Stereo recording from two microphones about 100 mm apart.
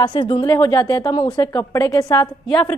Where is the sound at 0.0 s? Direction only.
50° left (ahead or behind).